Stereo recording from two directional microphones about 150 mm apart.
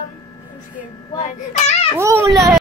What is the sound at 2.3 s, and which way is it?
Speech, centre (ahead or behind).